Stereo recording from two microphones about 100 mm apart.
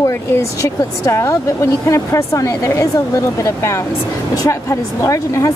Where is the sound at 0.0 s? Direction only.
35° left (ahead or behind).